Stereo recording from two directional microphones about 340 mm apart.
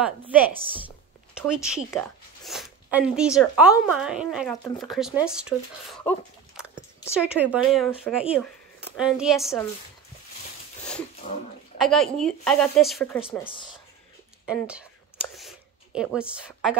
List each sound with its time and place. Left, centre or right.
0.0 s a woman's voice: centre
11.8 s a woman's voice: centre
14.4 s a sound: centre